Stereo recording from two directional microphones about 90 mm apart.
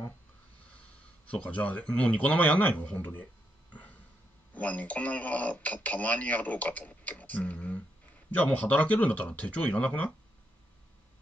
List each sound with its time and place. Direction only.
1.2 s speech: 15° left (ahead or behind)
3.7 s a sound: 15° left (ahead or behind)
4.6 s speech: 15° left (ahead or behind)